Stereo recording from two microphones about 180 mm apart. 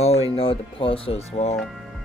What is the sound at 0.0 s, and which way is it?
Speech, 35° left (ahead or behind).